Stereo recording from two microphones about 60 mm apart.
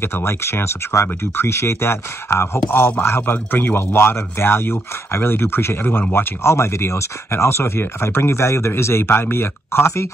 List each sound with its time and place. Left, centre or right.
0.0 s speech: left